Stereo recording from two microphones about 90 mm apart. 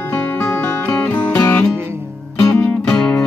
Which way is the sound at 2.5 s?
10° left (ahead or behind).